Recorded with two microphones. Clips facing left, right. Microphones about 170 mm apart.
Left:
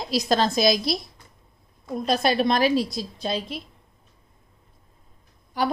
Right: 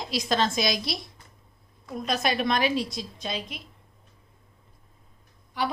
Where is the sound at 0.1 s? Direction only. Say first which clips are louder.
Left 4 dB; 35° left (ahead or behind).